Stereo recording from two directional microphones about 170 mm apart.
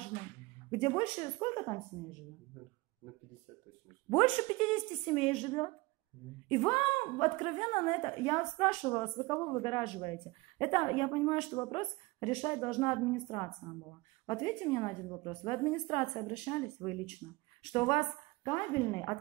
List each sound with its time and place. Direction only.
0.7 s speech: 25° left (ahead or behind)
4.2 s speech: 30° left (ahead or behind)
9.2 s speech: 15° left (ahead or behind)